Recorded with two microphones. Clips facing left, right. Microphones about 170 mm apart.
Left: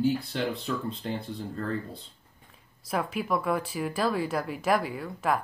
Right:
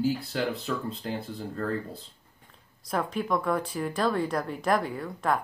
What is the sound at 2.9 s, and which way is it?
A woman's voice, 5° left (ahead or behind).